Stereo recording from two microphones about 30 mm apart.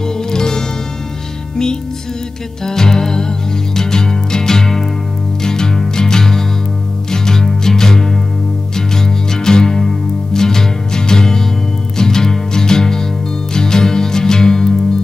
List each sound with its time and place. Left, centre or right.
0.3 s music: left
2.6 s music: centre